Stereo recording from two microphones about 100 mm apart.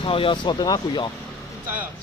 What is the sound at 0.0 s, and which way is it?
Speech, 60° left (ahead or behind).